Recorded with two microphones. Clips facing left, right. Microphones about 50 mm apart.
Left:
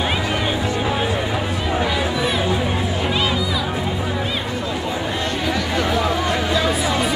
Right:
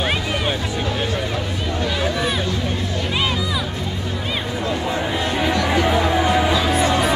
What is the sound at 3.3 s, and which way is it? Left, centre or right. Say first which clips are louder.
Music: left 1 dB; centre.